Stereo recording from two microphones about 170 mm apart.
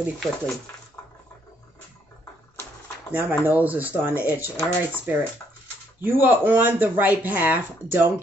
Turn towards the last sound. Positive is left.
turn(degrees=-10)  # may be behind; listen again after turning